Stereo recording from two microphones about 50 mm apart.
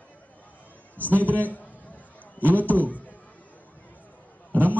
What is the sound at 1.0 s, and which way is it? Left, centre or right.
A man's voice, left.